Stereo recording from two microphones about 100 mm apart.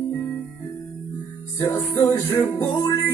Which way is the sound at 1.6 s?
35° left (ahead or behind).